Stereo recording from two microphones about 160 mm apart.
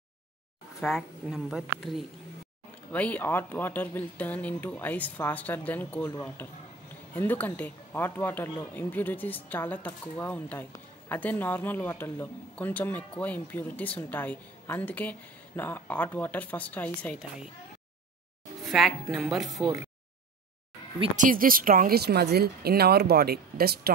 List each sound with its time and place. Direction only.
0.7 s speech: centre (ahead or behind)
2.9 s speech: 10° left (ahead or behind)
18.7 s speech: centre (ahead or behind)
21.2 s speech: 60° right (ahead or behind); by 23.9 s 75° right (ahead or behind)